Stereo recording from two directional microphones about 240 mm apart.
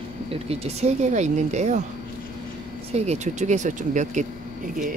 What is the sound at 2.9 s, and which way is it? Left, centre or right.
Speech, right.